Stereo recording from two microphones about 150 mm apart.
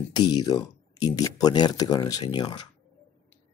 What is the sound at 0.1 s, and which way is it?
Speech, 30° left (ahead or behind).